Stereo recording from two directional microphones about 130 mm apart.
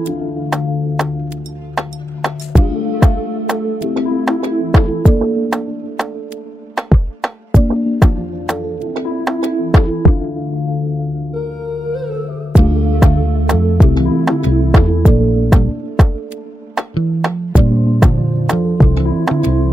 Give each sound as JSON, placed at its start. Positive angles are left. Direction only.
{"t": 0.5, "sound": "music", "side_deg": 0}
{"t": 11.3, "sound": "music", "side_deg": 0}